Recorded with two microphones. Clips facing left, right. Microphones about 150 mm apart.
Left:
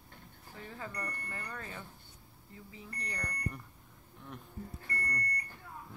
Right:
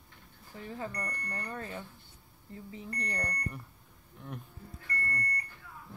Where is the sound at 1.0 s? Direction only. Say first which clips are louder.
Right 3 dB; 40° right (ahead or behind).